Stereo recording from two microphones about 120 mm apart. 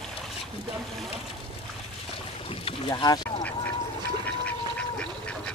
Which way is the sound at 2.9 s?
35° left (ahead or behind).